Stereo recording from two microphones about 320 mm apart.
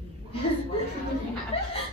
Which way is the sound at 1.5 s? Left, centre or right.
Centre.